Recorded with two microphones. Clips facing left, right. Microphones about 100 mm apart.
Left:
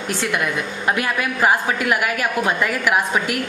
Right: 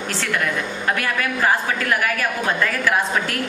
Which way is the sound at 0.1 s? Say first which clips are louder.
Left 2 dB; 15° left (ahead or behind).